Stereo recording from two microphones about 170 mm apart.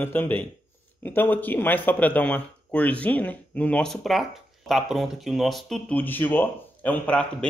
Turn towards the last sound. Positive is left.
turn(degrees=5)  # may be behind; listen again after turning